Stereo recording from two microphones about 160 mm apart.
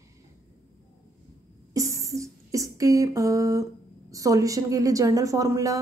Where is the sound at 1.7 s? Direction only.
20° right (ahead or behind).